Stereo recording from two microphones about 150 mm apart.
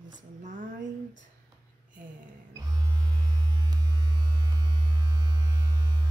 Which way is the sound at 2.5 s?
25° right (ahead or behind).